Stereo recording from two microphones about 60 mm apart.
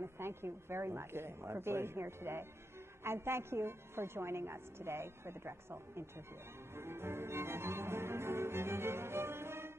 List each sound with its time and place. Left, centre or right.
0.0 s a woman's voice: right
6.7 s music: right